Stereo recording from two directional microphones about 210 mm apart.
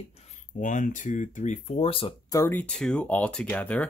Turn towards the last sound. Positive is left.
turn(degrees=5)  # may be behind; listen again after turning